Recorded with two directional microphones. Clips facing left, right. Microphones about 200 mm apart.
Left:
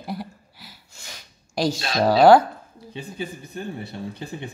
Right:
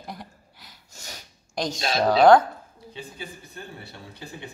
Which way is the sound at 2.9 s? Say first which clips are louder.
Left 7 dB; 20° left (ahead or behind).